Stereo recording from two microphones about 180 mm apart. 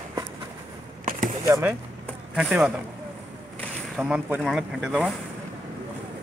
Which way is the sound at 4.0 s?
10° right (ahead or behind).